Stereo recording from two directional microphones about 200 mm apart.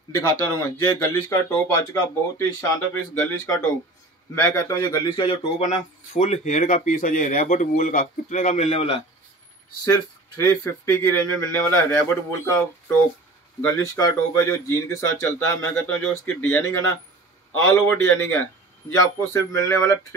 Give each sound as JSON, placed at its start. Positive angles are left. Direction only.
{"t": 0.1, "sound": "speech", "side_deg": 20}
{"t": 5.6, "sound": "speech", "side_deg": 40}
{"t": 9.8, "sound": "speech", "side_deg": 20}